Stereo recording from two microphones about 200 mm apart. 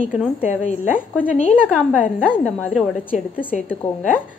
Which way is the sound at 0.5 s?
40° left (ahead or behind).